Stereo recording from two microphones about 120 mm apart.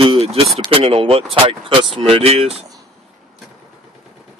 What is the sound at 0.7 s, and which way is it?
Speech, 50° right (ahead or behind).